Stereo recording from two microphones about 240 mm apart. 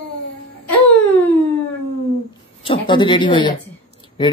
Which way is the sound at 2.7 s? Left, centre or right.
Centre.